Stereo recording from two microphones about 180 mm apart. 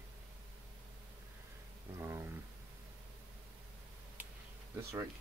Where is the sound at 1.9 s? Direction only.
15° right (ahead or behind).